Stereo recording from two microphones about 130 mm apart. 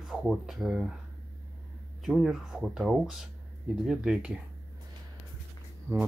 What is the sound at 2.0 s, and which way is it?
Speech, 5° right (ahead or behind).